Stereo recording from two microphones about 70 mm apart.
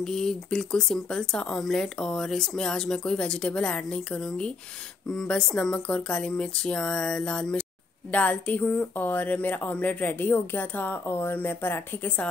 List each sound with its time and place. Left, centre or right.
0.0 s speech: centre; by 12.1 s left